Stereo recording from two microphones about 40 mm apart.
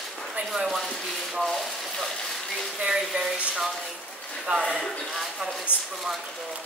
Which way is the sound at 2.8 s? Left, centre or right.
Centre.